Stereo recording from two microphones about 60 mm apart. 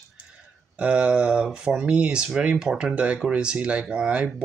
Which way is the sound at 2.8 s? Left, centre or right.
Centre.